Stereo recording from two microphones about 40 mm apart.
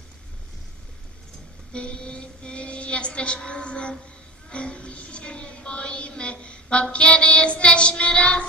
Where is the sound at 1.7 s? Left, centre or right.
Left.